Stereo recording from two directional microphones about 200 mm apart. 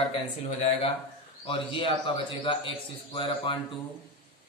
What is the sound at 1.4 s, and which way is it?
A man's voice, 25° left (ahead or behind).